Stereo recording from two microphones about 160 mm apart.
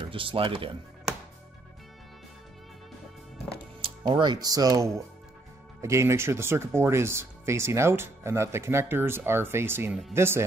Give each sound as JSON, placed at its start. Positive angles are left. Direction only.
{"t": 0.0, "sound": "speech", "side_deg": -35}
{"t": 3.8, "sound": "speech", "side_deg": -30}